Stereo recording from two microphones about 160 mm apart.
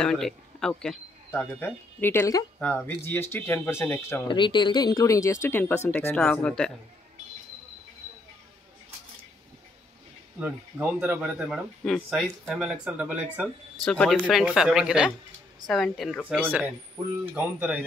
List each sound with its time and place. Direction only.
0.0 s speech: 5° left (ahead or behind)
4.3 s speech: 30° left (ahead or behind); by 6.7 s 5° left (ahead or behind)
10.4 s speech: 10° right (ahead or behind)
13.8 s speech: 5° left (ahead or behind)
16.3 s speech: 10° right (ahead or behind)